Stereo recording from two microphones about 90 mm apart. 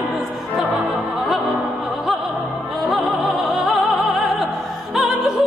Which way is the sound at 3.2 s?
Centre (ahead or behind).